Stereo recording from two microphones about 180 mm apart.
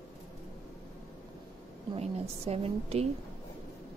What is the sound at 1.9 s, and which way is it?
A woman's voice, 35° right (ahead or behind).